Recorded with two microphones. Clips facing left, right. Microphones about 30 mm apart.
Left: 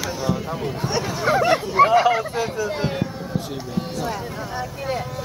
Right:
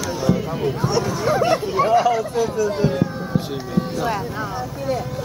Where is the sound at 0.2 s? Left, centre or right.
Centre.